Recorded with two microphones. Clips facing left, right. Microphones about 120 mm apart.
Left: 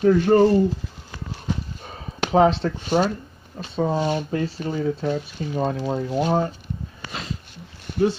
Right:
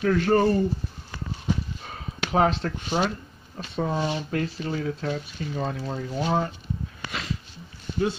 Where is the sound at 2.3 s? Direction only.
30° left (ahead or behind).